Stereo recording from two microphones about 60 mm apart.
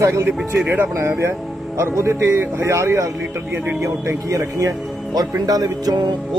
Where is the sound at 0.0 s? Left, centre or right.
Right.